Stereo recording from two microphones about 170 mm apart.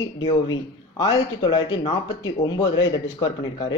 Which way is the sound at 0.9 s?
30° left (ahead or behind).